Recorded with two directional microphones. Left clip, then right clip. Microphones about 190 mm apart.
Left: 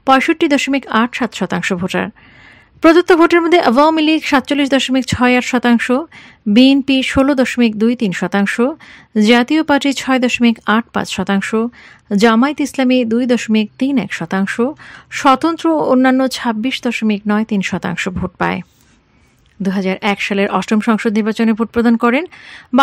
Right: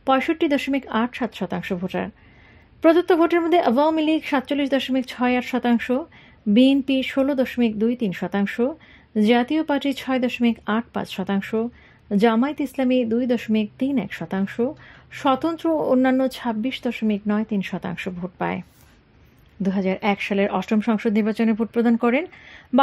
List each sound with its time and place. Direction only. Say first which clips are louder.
0.0 s speech: left 8 dB; 25° left (ahead or behind)
19.6 s speech: left 5 dB; 20° left (ahead or behind)